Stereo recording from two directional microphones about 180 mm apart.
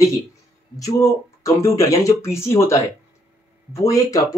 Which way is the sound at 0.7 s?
20° left (ahead or behind).